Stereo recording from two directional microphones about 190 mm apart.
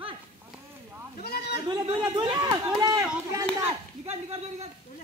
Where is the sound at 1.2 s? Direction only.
55° left (ahead or behind).